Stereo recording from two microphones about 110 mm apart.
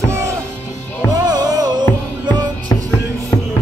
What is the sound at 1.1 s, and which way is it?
Music, 35° right (ahead or behind).